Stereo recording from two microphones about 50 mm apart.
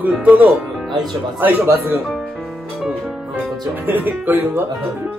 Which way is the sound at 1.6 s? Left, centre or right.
Right.